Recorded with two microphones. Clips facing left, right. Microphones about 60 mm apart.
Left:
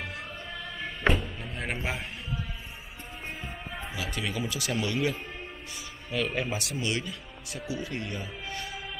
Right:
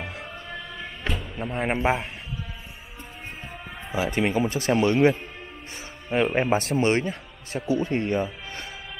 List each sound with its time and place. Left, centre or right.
1.4 s a man's voice: right
3.9 s a man's voice: right